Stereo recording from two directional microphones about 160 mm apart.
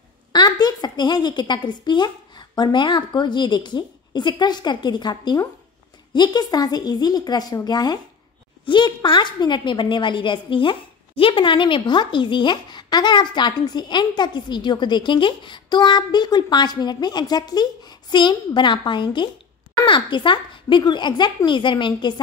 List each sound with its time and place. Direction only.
0.3 s a woman's voice: 25° left (ahead or behind)